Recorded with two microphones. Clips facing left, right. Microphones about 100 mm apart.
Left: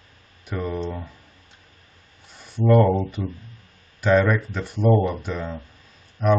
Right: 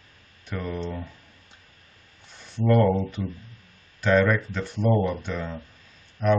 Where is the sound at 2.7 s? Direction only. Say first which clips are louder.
Left 3 dB; 10° left (ahead or behind).